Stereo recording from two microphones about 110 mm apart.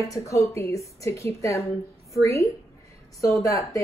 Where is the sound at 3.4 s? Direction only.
30° left (ahead or behind).